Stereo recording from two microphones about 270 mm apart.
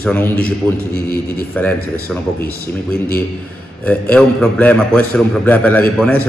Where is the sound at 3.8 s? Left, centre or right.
Centre.